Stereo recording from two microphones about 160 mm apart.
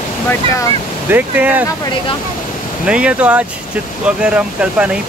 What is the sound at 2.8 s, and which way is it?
Speech, 5° right (ahead or behind).